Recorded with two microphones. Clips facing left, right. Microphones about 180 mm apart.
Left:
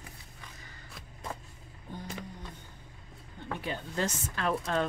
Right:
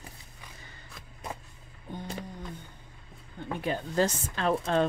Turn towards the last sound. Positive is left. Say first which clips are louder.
# right 4 dB
turn(degrees=-25)  # may be behind; listen again after turning